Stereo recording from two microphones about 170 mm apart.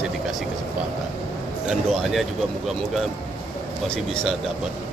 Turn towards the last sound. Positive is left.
turn(degrees=5)  # may be behind; listen again after turning